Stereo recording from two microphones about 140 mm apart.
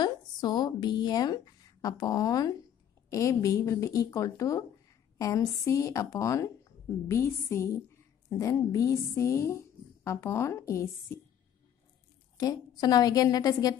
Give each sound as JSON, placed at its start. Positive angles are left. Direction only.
{"t": 0.0, "sound": "a woman's voice", "side_deg": 30}
{"t": 12.4, "sound": "a woman's voice", "side_deg": 30}